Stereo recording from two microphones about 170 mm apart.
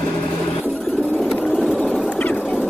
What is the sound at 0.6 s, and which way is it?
Printer, centre (ahead or behind).